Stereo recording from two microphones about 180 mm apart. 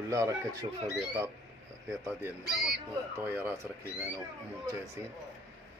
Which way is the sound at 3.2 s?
10° right (ahead or behind).